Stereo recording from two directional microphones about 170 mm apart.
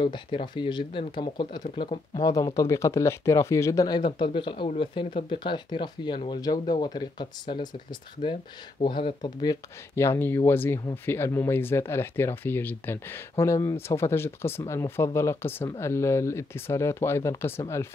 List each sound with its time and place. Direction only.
0.0 s speech: 30° left (ahead or behind)